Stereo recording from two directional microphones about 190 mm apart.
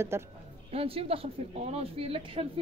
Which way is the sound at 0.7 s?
30° right (ahead or behind).